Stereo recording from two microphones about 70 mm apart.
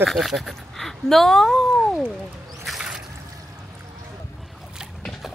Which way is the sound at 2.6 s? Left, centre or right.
Centre.